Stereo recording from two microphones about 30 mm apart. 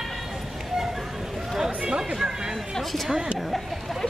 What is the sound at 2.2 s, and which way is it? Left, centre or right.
Chatter, right.